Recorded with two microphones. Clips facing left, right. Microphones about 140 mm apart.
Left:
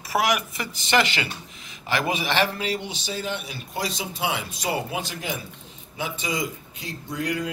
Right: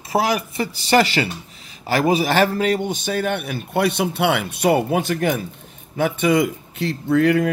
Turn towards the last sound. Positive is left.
turn(degrees=-60)  # may be behind; listen again after turning